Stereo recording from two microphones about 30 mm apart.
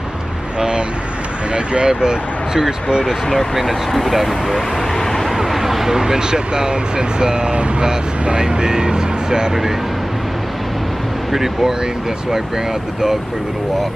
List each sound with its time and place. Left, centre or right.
0.6 s vehicle: right
1.5 s speech: right
3.5 s speech: centre
5.5 s speech: centre; by 9.5 s right
11.3 s speech: centre